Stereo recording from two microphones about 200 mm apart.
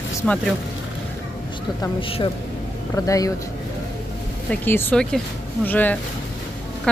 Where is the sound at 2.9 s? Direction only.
15° left (ahead or behind).